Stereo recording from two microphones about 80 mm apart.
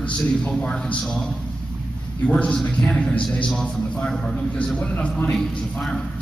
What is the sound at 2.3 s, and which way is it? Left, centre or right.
A man's voice, centre.